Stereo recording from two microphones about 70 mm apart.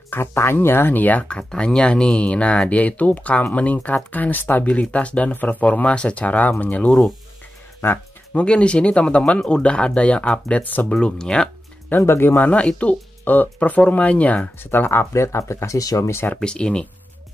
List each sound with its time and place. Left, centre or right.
0.1 s speech: left
1.5 s speech: centre
8.3 s speech: centre
10.9 s speech: centre
12.0 s speech: left
12.4 s speech: left
14.6 s speech: left
16.1 s speech: left
16.3 s speech: centre